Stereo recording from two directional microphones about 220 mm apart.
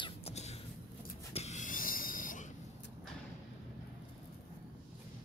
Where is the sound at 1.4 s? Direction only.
30° left (ahead or behind).